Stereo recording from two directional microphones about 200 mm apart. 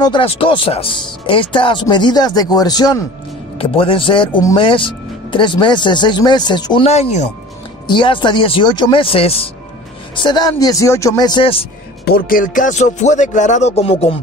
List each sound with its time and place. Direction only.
0.0 s speech: 25° left (ahead or behind)
12.0 s speech: 45° left (ahead or behind); by 14.1 s 30° left (ahead or behind)